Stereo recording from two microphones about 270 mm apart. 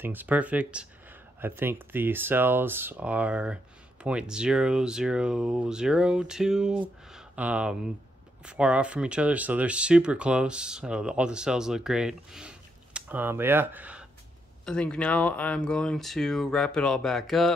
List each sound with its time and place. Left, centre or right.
0.0 s speech: centre